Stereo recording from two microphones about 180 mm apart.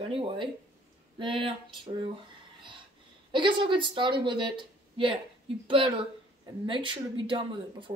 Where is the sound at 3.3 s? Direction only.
25° right (ahead or behind).